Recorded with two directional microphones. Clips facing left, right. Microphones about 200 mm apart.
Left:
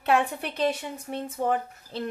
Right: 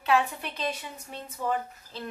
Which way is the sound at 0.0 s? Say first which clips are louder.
Left 2 dB; 55° left (ahead or behind).